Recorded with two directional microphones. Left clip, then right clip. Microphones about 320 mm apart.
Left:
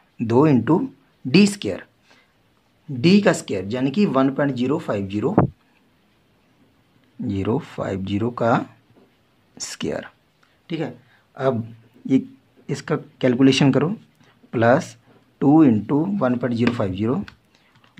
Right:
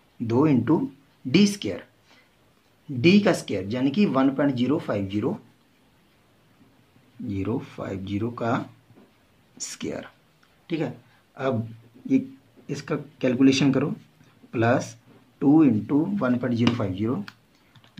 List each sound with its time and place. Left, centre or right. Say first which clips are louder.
0.3 s speech: left 5 dB; left
7.2 s speech: left 6 dB; left
12.6 s speech: left 5 dB; left